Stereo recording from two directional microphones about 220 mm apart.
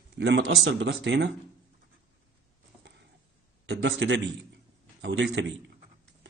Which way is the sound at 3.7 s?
55° right (ahead or behind).